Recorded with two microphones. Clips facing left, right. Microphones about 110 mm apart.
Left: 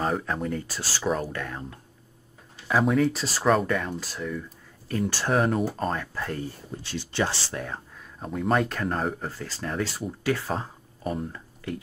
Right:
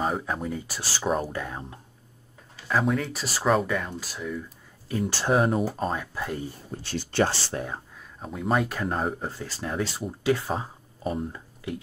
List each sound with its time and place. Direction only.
0.0 s speech: 5° right (ahead or behind)
1.3 s speech: 20° right (ahead or behind)
2.7 s speech: centre (ahead or behind)
5.1 s speech: 20° right (ahead or behind)
5.4 s speech: 5° right (ahead or behind)
6.8 s speech: 45° right (ahead or behind)
7.6 s speech: 30° right (ahead or behind)
8.2 s speech: 5° right (ahead or behind); by 10.5 s 20° right (ahead or behind)
10.5 s a sound: 5° right (ahead or behind)